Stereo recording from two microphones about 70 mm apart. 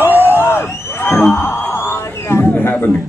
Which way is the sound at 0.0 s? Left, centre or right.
Right.